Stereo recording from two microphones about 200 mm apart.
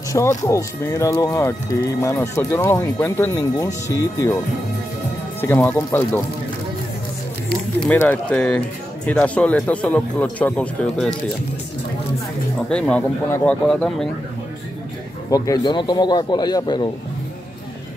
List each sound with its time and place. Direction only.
0.1 s speech: 15° left (ahead or behind)
5.4 s speech: 10° left (ahead or behind)
7.8 s speech: 5° left (ahead or behind)
12.6 s speech: 5° left (ahead or behind)
15.2 s speech: 20° left (ahead or behind)